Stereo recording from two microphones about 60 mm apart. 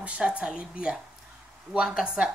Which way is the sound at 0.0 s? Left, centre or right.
Centre.